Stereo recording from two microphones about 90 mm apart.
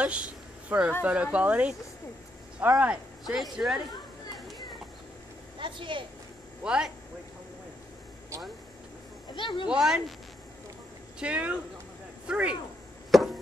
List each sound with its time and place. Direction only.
0.0 s a sound: 10° right (ahead or behind)
1.0 s speech: 15° right (ahead or behind)
2.8 s speech: 10° right (ahead or behind)
5.6 s speech: 65° right (ahead or behind)
6.6 s speech: 10° right (ahead or behind)
9.3 s speech: 60° left (ahead or behind)
9.7 s speech: 10° right (ahead or behind)
11.1 s speech: 15° right (ahead or behind)
13.1 s chop: centre (ahead or behind)